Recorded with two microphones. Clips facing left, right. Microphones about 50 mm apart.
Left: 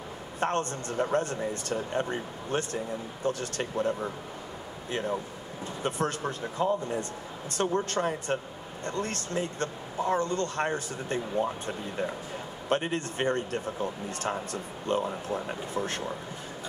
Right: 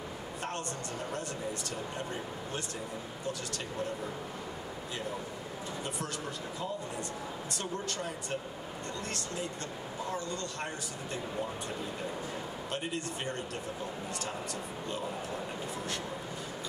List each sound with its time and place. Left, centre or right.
0.4 s speech: left
5.9 s speech: left
12.6 s speech: left